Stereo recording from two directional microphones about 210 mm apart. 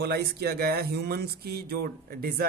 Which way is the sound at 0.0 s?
50° right (ahead or behind).